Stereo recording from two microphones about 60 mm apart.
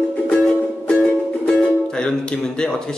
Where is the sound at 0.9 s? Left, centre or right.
Centre.